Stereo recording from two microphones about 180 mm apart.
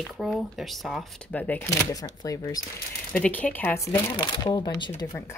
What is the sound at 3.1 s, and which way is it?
Speech, 10° left (ahead or behind).